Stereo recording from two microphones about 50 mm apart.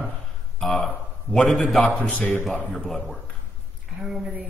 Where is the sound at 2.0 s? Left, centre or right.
Left.